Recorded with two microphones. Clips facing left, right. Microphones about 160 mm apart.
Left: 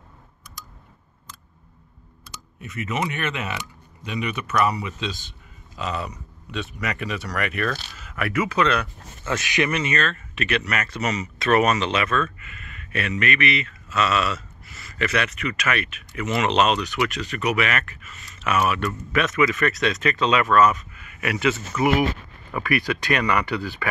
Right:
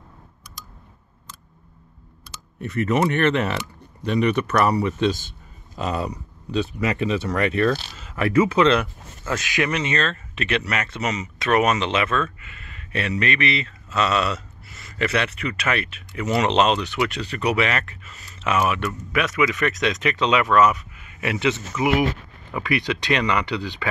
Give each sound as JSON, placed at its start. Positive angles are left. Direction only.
{"t": 2.6, "sound": "a man's voice", "side_deg": -55}
{"t": 5.8, "sound": "speech", "side_deg": -40}
{"t": 9.9, "sound": "speech", "side_deg": -30}